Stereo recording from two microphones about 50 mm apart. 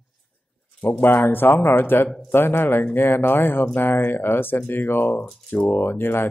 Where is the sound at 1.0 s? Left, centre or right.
Left.